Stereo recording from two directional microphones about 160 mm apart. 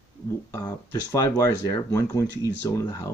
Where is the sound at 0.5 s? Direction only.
15° left (ahead or behind).